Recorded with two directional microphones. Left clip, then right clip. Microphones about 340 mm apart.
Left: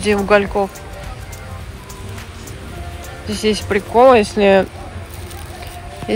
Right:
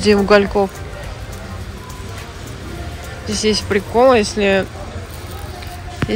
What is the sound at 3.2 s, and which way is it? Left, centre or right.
Speech, centre.